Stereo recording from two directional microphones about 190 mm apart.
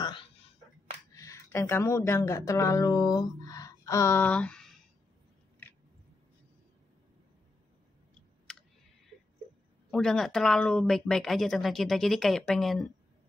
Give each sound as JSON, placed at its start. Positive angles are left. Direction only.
{"t": 1.1, "sound": "speech", "side_deg": 15}
{"t": 8.5, "sound": "clicking", "side_deg": 5}
{"t": 9.8, "sound": "a woman's voice", "side_deg": 0}